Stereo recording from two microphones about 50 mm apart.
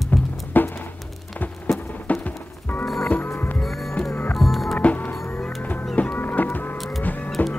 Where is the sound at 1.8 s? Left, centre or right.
Left.